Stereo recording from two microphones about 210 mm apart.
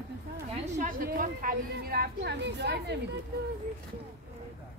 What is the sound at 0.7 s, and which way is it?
Speech, 40° right (ahead or behind).